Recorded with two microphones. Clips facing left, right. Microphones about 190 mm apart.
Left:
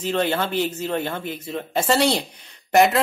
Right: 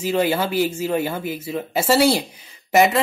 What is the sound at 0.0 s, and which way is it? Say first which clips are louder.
Speech: right 2 dB; 10° right (ahead or behind).